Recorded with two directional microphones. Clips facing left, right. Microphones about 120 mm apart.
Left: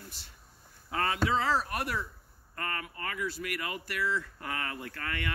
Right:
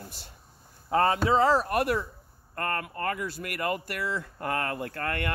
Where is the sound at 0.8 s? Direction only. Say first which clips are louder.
Right 7 dB; 40° right (ahead or behind).